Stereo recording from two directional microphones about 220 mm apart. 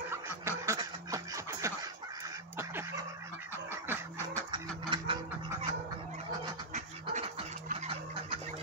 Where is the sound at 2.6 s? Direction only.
10° right (ahead or behind).